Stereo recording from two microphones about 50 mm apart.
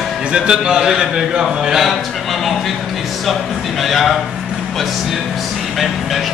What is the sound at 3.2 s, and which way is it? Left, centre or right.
A man's voice, centre.